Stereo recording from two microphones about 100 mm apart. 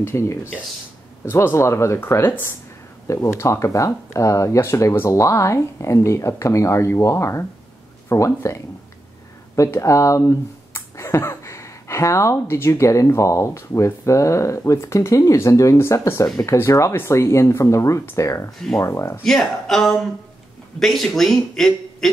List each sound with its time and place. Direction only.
0.0 s speech: 25° left (ahead or behind)
19.2 s speech: 5° left (ahead or behind)